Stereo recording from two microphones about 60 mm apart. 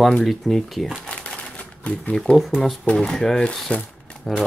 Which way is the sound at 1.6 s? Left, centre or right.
Centre.